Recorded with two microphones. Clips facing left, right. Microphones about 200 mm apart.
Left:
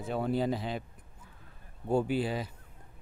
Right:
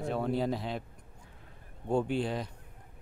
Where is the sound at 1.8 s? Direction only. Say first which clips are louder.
Left 1 dB; 5° left (ahead or behind).